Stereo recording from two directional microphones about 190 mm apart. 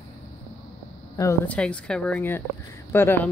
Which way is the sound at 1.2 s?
15° left (ahead or behind).